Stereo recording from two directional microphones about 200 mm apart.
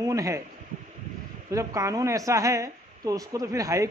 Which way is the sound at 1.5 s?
15° right (ahead or behind).